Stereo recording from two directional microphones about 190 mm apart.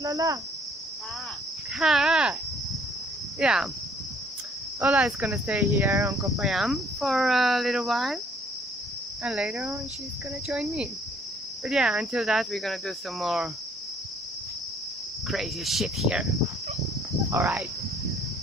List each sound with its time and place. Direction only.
0.0 s speech: 20° right (ahead or behind)
1.8 s cricket: 5° right (ahead or behind)
3.3 s speech: 5° right (ahead or behind)
4.7 s speech: 5° right (ahead or behind)
6.3 s cricket: centre (ahead or behind)
9.2 s cricket: 5° right (ahead or behind)
15.2 s cricket: centre (ahead or behind)
17.3 s speech: 10° right (ahead or behind)